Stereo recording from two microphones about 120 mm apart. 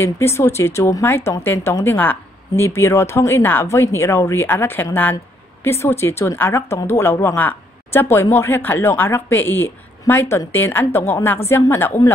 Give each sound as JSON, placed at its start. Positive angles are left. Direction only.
{"t": 0.0, "sound": "a woman's voice", "side_deg": 20}